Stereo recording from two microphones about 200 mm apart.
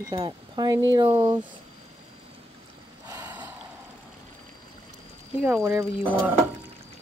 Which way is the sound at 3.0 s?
20° right (ahead or behind).